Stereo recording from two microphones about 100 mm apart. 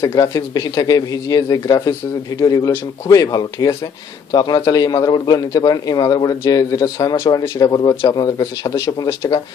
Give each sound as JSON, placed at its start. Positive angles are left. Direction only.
{"t": 0.1, "sound": "a man's voice", "side_deg": 40}